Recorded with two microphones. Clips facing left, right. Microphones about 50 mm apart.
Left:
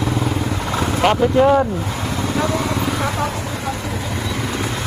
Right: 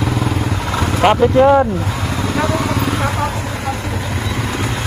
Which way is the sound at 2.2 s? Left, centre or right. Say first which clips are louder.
Right 2 dB; right.